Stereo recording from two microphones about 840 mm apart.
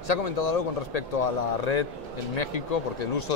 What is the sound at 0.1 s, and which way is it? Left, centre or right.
Speech, left.